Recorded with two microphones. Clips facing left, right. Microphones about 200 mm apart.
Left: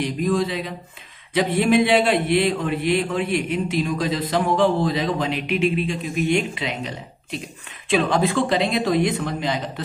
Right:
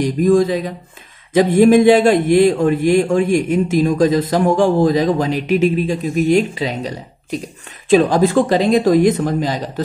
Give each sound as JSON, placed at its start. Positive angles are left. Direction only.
{"t": 0.0, "sound": "speech", "side_deg": -45}